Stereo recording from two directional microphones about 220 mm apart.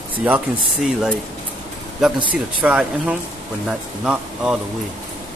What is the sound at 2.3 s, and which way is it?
Speech, 5° right (ahead or behind).